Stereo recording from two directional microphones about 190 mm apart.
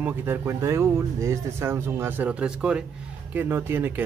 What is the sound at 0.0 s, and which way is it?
Speech, 10° right (ahead or behind).